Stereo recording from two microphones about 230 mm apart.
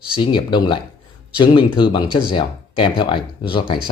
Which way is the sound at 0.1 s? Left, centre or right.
Left.